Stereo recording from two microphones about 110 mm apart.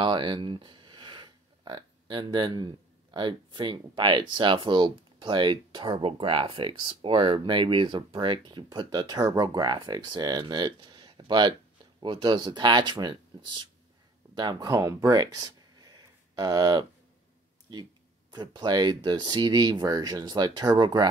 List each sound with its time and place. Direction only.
0.0 s speech: 45° right (ahead or behind)
6.0 s speech: 55° right (ahead or behind); by 16.8 s 35° right (ahead or behind)
18.3 s speech: 40° right (ahead or behind)